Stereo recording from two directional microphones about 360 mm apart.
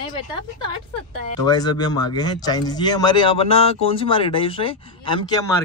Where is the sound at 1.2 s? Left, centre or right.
Centre.